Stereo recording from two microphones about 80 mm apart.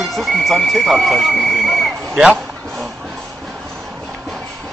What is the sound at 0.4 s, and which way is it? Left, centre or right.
Speech, centre.